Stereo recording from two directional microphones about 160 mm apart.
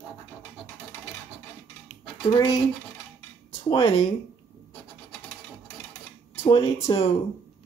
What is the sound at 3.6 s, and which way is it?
Speech, 30° left (ahead or behind).